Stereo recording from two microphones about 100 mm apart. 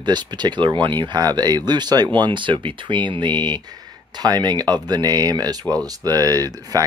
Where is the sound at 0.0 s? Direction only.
45° right (ahead or behind).